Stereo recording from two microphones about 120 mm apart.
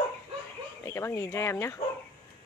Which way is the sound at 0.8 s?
25° left (ahead or behind).